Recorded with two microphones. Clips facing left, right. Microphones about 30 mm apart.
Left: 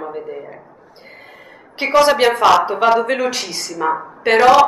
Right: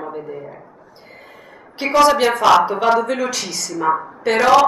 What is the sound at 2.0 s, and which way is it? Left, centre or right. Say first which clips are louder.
Speech: even; left.